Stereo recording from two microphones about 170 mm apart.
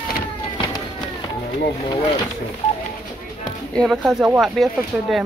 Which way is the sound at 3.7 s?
Centre (ahead or behind).